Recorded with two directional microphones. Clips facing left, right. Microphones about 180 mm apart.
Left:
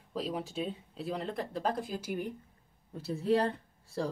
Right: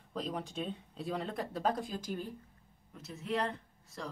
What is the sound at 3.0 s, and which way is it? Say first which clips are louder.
A woman's voice: left 7 dB; 35° left (ahead or behind).